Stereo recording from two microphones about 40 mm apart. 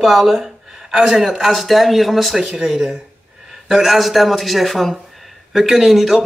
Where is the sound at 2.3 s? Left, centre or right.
Centre.